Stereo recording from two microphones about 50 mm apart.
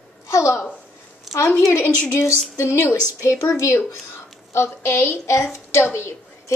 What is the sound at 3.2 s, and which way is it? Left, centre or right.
Speech, left.